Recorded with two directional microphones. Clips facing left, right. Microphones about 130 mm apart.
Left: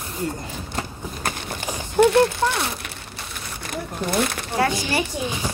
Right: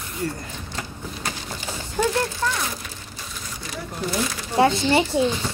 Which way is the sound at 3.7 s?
55° left (ahead or behind).